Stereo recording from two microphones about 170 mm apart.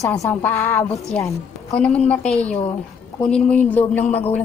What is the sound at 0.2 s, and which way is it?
A woman's voice, 10° left (ahead or behind).